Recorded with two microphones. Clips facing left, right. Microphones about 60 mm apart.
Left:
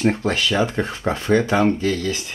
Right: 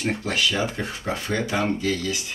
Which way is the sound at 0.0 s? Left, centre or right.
Left.